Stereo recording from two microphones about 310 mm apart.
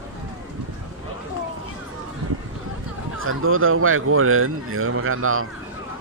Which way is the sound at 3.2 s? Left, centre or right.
Right.